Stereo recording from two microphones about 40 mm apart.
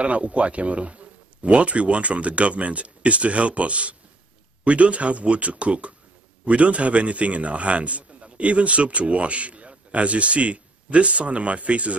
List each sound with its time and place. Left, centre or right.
0.0 s a man's voice: right